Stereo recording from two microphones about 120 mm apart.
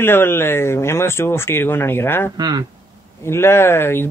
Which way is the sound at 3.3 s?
20° left (ahead or behind).